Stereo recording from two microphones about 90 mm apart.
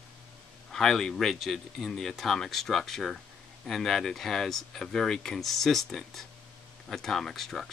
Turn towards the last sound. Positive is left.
turn(degrees=5)  # may be behind; listen again after turning